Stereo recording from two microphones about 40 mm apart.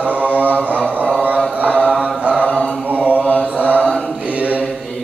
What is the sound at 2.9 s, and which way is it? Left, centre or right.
Mantra, right.